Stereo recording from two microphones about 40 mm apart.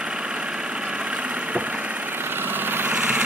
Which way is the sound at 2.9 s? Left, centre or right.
Right.